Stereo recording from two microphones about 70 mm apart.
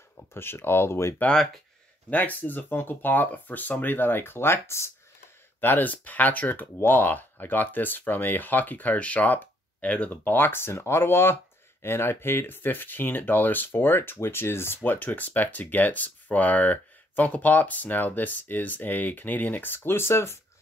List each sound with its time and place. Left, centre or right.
0.2 s speech: left
1.3 s speech: centre
2.0 s speech: left
5.6 s speech: left
14.9 s speech: left